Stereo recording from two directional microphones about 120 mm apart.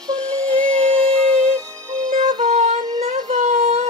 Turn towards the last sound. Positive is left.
turn(degrees=-70)  # may be behind; listen again after turning